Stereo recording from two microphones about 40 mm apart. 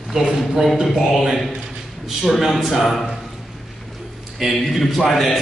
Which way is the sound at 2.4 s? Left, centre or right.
Centre.